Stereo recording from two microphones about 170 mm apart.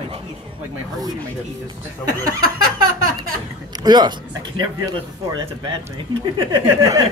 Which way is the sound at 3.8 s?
25° right (ahead or behind).